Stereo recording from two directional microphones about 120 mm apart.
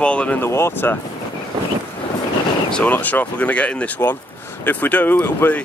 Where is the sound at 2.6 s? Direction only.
10° left (ahead or behind).